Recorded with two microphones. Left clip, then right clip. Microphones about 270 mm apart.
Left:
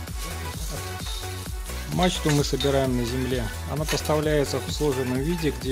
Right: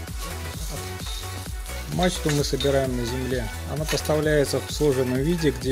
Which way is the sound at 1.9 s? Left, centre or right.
Centre.